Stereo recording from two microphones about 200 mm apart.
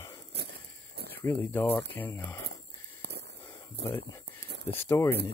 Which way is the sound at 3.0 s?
60° right (ahead or behind).